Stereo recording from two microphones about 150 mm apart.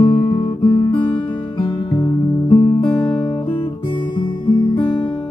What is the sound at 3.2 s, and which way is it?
Guitar, 30° left (ahead or behind).